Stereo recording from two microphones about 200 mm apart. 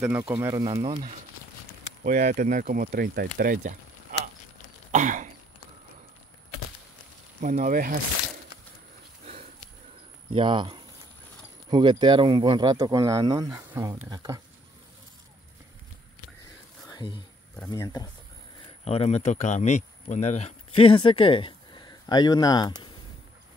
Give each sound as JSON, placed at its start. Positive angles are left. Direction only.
{"t": 0.0, "sound": "speech", "side_deg": -10}
{"t": 2.0, "sound": "speech", "side_deg": -45}
{"t": 4.9, "sound": "cough", "side_deg": -40}
{"t": 7.3, "sound": "speech", "side_deg": -40}
{"t": 9.2, "sound": "wild animals", "side_deg": -30}
{"t": 10.3, "sound": "speech", "side_deg": -25}
{"t": 16.9, "sound": "a sound", "side_deg": 25}
{"t": 17.6, "sound": "speech", "side_deg": 20}
{"t": 18.9, "sound": "speech", "side_deg": 30}